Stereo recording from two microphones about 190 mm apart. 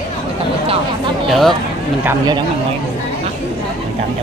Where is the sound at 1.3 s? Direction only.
Centre (ahead or behind).